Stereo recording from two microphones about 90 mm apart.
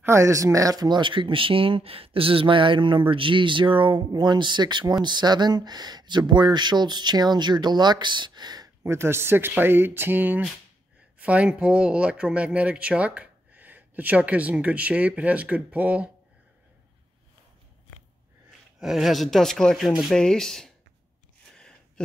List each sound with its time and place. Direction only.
0.0 s speech: 35° right (ahead or behind); by 8.6 s 50° right (ahead or behind)
8.8 s speech: 30° right (ahead or behind)
18.8 s speech: 5° right (ahead or behind)
21.5 s a sound: 10° left (ahead or behind)